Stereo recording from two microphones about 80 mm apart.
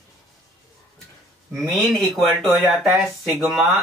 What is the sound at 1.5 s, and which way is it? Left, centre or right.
Speech, centre.